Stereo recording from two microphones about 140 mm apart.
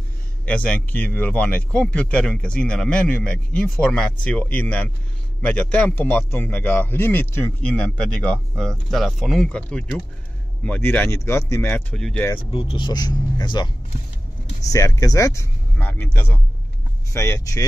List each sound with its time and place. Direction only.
0.5 s speech: 10° left (ahead or behind)
11.9 s speech: 5° left (ahead or behind)
12.4 s speech: 40° left (ahead or behind); by 17.6 s 20° left (ahead or behind)